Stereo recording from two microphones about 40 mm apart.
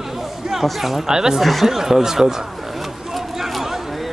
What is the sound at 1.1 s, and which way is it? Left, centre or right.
Speech, centre.